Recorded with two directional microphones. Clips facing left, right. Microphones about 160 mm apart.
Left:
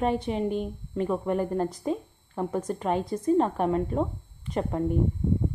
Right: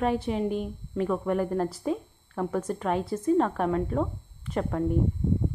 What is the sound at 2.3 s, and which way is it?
A woman's voice, 15° left (ahead or behind).